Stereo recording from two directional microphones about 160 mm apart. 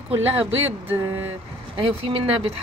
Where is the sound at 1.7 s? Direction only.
35° right (ahead or behind).